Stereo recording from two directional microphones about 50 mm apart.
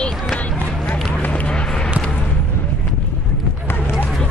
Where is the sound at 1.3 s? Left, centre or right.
Left.